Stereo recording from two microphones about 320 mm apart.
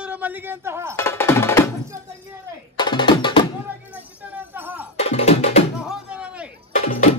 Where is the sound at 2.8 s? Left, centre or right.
Centre.